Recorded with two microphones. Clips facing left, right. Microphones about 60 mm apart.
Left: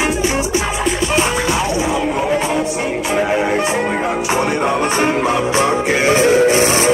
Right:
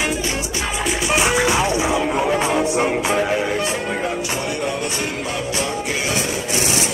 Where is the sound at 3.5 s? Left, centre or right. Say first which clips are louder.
Left 5 dB; left.